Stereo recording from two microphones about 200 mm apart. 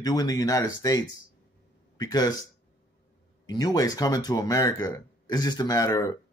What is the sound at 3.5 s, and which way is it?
Speech, 20° left (ahead or behind).